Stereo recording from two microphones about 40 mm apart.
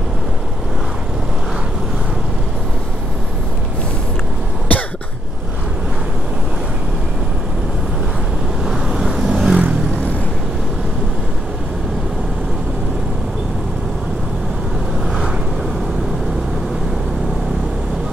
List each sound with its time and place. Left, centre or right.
4.7 s cough: left
8.6 s vehicle: centre